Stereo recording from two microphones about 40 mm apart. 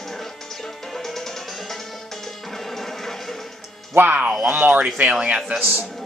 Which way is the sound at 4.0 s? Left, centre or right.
Right.